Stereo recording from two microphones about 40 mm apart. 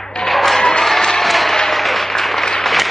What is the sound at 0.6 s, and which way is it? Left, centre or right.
Music, centre.